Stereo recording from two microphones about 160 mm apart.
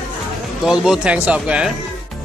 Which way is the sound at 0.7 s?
5° right (ahead or behind).